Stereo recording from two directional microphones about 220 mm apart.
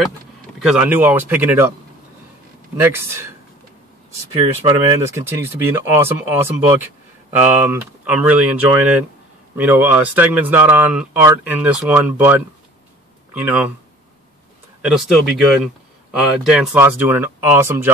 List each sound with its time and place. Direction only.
0.6 s speech: 5° right (ahead or behind)
2.8 s speech: 10° right (ahead or behind)
4.3 s speech: 20° right (ahead or behind)
5.4 s speech: 10° right (ahead or behind)
14.8 s speech: 5° right (ahead or behind)